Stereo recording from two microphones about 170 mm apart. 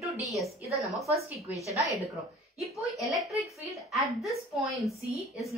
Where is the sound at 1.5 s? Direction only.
20° left (ahead or behind).